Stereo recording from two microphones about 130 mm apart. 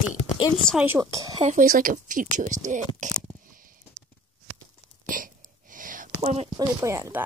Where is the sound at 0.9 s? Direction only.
25° right (ahead or behind).